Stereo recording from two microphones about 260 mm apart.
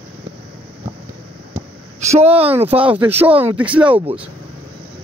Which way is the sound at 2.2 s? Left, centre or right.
Right.